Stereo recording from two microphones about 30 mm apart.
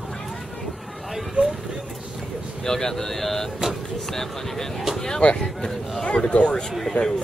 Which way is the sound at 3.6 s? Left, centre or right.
Right.